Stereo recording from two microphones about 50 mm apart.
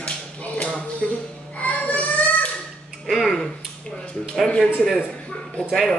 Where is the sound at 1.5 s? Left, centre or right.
Left.